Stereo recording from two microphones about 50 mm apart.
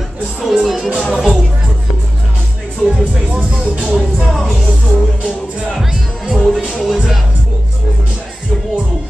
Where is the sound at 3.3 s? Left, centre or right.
Right.